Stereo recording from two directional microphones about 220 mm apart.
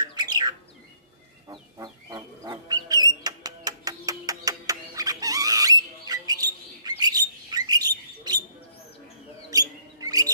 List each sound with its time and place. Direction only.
0.0 s bird: 20° right (ahead or behind)
1.5 s a sound: 20° right (ahead or behind)
9.5 s chirp: 15° right (ahead or behind)